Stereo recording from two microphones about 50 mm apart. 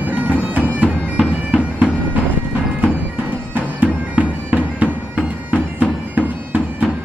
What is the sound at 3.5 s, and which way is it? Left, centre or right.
Music, right.